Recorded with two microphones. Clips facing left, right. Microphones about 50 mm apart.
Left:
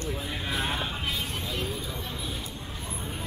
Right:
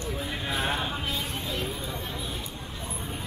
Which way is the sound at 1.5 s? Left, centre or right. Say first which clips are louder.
Even; right.